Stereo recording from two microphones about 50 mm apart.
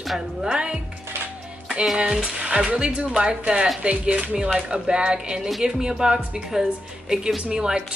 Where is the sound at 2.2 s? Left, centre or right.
Centre.